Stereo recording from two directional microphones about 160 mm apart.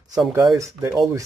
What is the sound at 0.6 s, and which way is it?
Speech, 15° right (ahead or behind).